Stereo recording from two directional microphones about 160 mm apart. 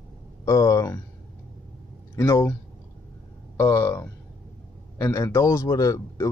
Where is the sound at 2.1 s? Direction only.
20° left (ahead or behind).